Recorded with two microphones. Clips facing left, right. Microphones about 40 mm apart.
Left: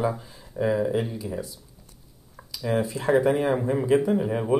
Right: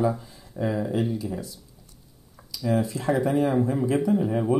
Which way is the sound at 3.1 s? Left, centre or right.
Left.